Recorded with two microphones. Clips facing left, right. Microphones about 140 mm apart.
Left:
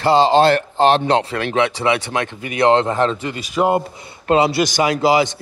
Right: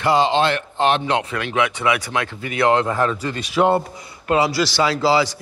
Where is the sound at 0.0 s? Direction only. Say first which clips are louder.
Left 4 dB; 30° left (ahead or behind).